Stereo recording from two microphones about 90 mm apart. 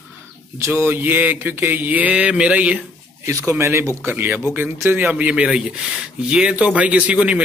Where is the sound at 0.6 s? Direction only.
25° right (ahead or behind).